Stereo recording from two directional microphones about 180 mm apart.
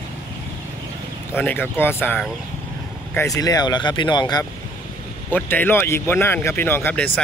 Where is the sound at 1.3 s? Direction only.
10° left (ahead or behind).